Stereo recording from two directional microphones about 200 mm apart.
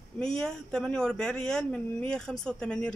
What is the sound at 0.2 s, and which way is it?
Speech, 5° left (ahead or behind).